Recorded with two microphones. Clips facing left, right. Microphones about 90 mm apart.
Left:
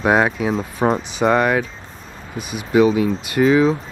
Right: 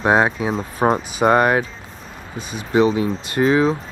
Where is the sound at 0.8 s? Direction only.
20° right (ahead or behind).